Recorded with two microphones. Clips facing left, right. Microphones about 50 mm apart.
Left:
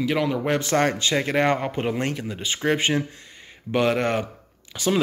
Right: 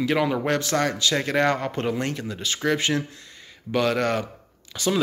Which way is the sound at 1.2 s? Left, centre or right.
Left.